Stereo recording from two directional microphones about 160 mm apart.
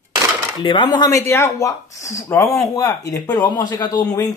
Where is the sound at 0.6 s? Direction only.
30° left (ahead or behind).